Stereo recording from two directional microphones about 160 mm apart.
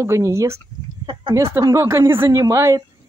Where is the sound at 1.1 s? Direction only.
30° right (ahead or behind).